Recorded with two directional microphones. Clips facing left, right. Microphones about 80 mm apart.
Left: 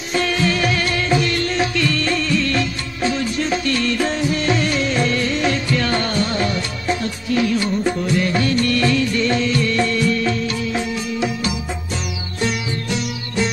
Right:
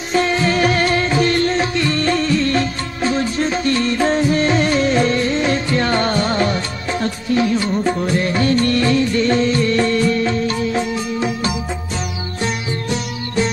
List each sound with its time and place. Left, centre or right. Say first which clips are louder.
0.1 s music: right 3 dB; right